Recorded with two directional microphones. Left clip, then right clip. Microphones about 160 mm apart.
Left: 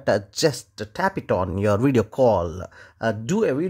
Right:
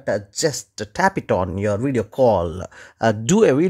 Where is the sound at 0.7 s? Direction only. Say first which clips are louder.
Right 5 dB; 15° right (ahead or behind).